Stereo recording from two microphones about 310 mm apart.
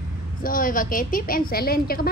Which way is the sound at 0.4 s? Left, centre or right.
Left.